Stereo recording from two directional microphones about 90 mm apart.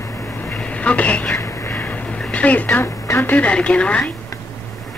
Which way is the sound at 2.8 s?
35° left (ahead or behind).